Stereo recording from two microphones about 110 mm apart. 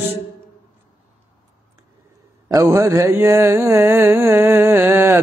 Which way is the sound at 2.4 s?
25° right (ahead or behind).